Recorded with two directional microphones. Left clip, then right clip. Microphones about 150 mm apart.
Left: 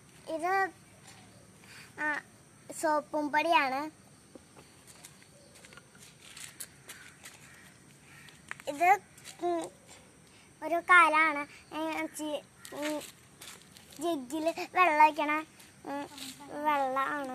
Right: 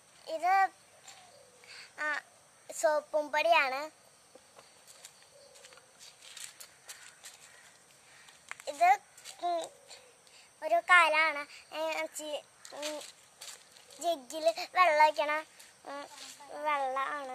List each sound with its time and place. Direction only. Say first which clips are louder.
0.2 s a sound: right 3 dB; 25° right (ahead or behind)
1.7 s babbling: left 1 dB; 25° right (ahead or behind)
2.7 s a woman's voice: right 1 dB; 20° right (ahead or behind)
8.6 s a sound: even; 10° right (ahead or behind)
9.4 s a child's voice: left 1 dB; 20° right (ahead or behind)
14.0 s a child's voice: right 2 dB; 25° right (ahead or behind)